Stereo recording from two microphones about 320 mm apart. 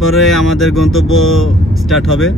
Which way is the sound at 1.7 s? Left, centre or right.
Centre.